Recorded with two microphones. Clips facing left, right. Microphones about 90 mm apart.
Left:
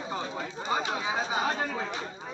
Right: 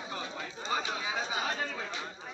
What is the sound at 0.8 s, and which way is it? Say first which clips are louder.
Chatter: left 4 dB; 25° left (ahead or behind).